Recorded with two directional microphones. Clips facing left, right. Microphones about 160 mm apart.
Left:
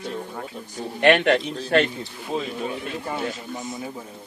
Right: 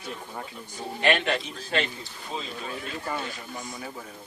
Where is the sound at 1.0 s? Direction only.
60° left (ahead or behind).